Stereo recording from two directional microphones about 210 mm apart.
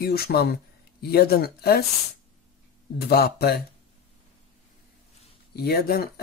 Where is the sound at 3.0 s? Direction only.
50° left (ahead or behind).